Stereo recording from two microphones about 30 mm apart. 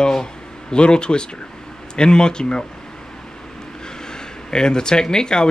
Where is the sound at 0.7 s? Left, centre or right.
Left.